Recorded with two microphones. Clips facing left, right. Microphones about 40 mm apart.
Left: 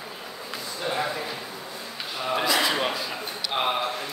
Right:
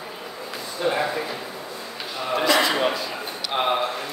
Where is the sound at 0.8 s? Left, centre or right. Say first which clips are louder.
Right 5 dB; right.